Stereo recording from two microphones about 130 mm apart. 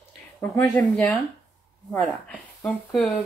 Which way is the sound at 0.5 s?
20° left (ahead or behind).